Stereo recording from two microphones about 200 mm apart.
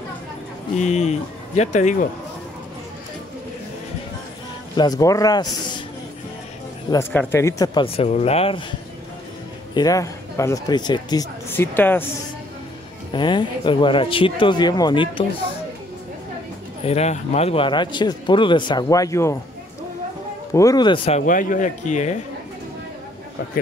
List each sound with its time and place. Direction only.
0.7 s speech: 35° left (ahead or behind)
4.7 s speech: 20° left (ahead or behind)
6.9 s speech: 10° left (ahead or behind); by 8.6 s 30° left (ahead or behind)
9.8 s speech: 15° left (ahead or behind)
13.1 s speech: 25° left (ahead or behind)
16.8 s speech: 30° left (ahead or behind); by 19.3 s 15° left (ahead or behind)
20.5 s speech: 20° left (ahead or behind)
21.2 s speech: 40° left (ahead or behind)